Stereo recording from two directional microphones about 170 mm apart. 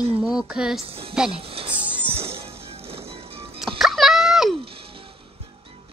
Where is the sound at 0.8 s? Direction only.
35° right (ahead or behind).